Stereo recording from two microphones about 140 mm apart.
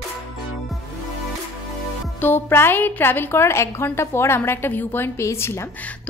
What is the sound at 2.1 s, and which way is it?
A woman's voice, 15° left (ahead or behind).